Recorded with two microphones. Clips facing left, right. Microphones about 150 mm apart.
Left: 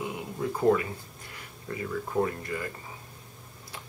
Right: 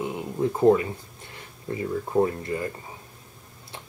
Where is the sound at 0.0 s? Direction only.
25° right (ahead or behind).